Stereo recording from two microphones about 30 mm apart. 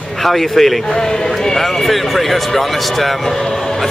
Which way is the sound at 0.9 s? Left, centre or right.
Left.